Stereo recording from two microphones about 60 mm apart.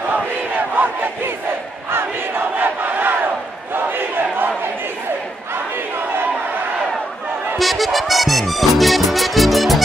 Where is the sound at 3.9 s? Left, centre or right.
Right.